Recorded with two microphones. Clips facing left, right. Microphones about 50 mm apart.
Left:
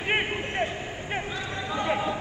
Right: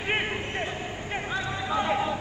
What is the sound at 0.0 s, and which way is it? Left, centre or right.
Vehicle, centre.